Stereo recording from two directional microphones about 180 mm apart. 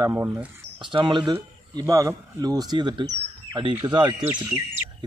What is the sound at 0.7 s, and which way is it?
Speech, 25° right (ahead or behind).